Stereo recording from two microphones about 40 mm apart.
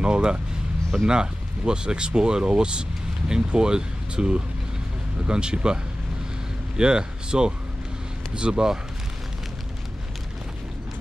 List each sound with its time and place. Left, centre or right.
0.0 s vehicle: right
1.0 s speech: right
6.8 s speech: right